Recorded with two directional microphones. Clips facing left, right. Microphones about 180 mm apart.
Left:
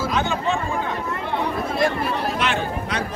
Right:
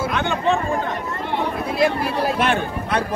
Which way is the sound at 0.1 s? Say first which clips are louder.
Right 2 dB; 60° right (ahead or behind).